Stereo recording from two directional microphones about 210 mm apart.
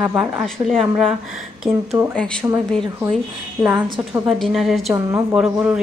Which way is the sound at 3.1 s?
5° right (ahead or behind).